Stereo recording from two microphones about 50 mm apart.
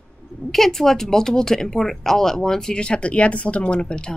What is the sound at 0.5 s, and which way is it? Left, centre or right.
Speech, centre.